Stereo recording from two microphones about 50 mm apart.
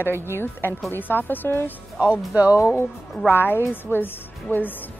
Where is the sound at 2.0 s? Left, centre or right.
Right.